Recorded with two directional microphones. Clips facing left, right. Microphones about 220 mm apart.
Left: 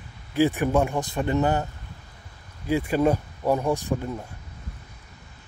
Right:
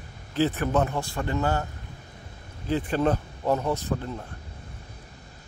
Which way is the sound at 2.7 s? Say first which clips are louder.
Left 3 dB; 10° left (ahead or behind).